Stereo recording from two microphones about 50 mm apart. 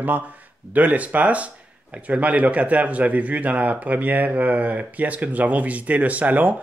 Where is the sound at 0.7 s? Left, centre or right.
Right.